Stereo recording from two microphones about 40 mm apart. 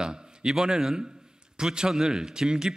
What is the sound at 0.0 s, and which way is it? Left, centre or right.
A man's voice, centre.